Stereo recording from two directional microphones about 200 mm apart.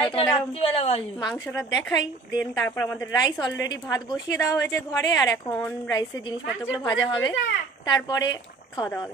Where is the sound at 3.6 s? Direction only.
15° left (ahead or behind).